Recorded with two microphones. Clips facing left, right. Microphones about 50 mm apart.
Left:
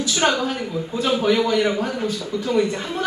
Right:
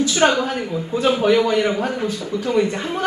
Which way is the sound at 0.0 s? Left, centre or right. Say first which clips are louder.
Right 3 dB; right.